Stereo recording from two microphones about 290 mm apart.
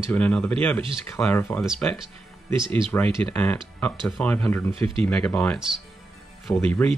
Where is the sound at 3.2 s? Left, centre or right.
Centre.